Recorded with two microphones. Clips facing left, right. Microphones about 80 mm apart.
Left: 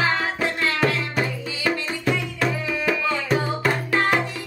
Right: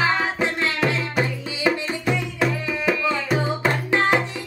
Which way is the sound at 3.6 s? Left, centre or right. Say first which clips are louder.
Right 1 dB; centre.